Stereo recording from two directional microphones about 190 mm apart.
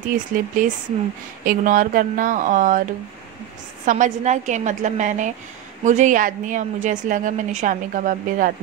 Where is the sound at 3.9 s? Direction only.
40° right (ahead or behind).